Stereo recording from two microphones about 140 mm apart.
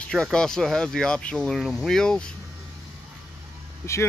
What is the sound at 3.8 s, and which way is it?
Speech, 20° left (ahead or behind).